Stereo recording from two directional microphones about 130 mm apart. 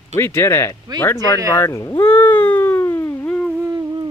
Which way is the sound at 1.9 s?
40° left (ahead or behind).